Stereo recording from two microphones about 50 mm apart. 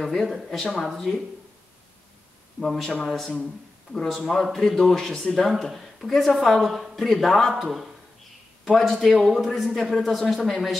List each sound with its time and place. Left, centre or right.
0.0 s speech: centre
2.6 s speech: centre